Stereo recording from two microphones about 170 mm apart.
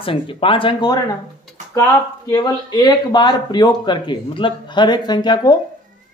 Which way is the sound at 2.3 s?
25° left (ahead or behind).